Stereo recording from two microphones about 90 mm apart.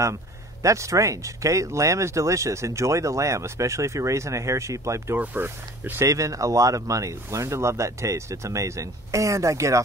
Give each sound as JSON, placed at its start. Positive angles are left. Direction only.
{"t": 0.6, "sound": "speech", "side_deg": -35}
{"t": 5.1, "sound": "speech", "side_deg": -20}
{"t": 6.0, "sound": "speech", "side_deg": -35}